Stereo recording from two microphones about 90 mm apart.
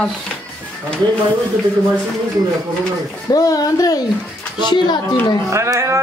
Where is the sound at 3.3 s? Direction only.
40° left (ahead or behind).